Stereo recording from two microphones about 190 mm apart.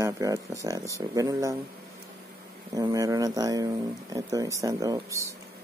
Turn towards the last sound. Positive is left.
turn(degrees=-15)  # may be behind; listen again after turning